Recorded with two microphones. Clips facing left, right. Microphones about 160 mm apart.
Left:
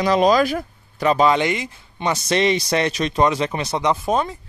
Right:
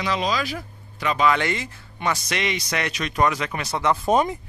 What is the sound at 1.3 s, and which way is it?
Speech, 15° left (ahead or behind).